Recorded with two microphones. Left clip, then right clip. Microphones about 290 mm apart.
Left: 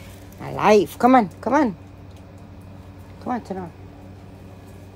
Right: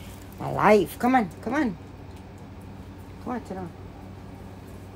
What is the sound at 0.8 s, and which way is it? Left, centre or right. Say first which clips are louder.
Speech: left 7 dB; left.